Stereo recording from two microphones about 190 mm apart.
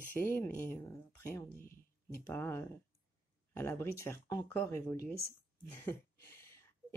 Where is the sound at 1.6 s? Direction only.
50° left (ahead or behind).